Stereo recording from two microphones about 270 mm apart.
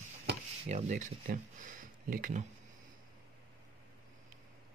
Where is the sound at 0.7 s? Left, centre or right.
Right.